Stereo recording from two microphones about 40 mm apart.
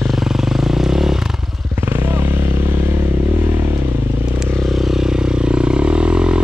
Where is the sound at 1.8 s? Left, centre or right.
Right.